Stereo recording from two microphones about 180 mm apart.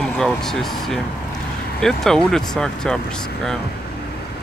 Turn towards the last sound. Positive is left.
turn(degrees=5)  # may be behind; listen again after turning